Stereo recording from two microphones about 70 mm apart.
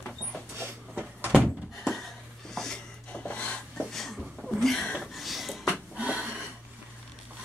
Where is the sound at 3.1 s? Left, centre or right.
Centre.